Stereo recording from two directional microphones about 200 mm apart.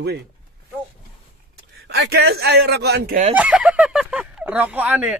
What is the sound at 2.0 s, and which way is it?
Speech, 55° right (ahead or behind).